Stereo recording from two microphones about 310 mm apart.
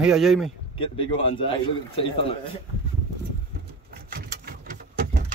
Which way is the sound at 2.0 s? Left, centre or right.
Centre.